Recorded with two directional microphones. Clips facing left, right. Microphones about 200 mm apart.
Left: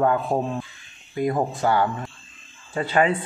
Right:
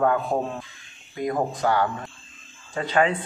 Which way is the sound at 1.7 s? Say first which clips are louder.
Left 2 dB; 10° left (ahead or behind).